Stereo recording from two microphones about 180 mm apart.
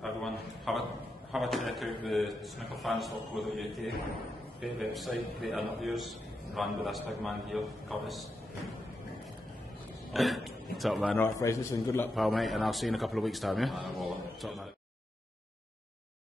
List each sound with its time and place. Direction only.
0.0 s a sound: centre (ahead or behind)
1.3 s a man's voice: centre (ahead or behind)
10.1 s speech: centre (ahead or behind)
11.1 s a man's voice: 15° left (ahead or behind)
12.1 s a man's voice: centre (ahead or behind)